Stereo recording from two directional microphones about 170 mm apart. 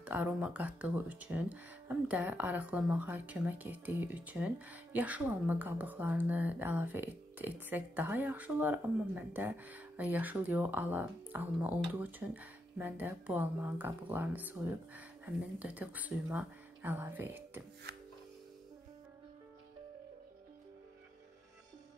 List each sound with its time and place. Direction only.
0.0 s speech: 10° right (ahead or behind)
17.9 s music: 70° right (ahead or behind)